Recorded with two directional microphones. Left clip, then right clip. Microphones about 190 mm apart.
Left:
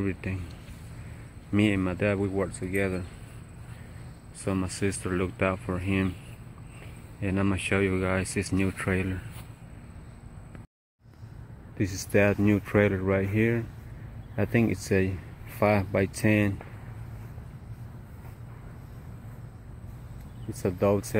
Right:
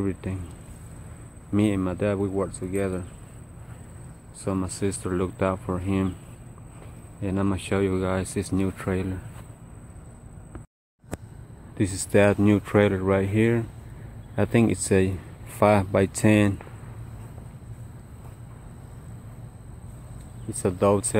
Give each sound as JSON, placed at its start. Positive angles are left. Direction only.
{"t": 0.0, "sound": "speech", "side_deg": -10}
{"t": 1.5, "sound": "speech", "side_deg": -5}
{"t": 4.5, "sound": "speech", "side_deg": 0}
{"t": 7.2, "sound": "speech", "side_deg": -5}
{"t": 11.7, "sound": "speech", "side_deg": -15}
{"t": 20.6, "sound": "speech", "side_deg": -10}